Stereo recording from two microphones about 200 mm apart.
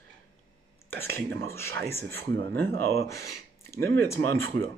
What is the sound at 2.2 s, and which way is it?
Speech, 55° right (ahead or behind).